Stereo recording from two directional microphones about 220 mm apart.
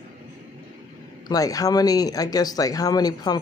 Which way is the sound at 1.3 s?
15° left (ahead or behind).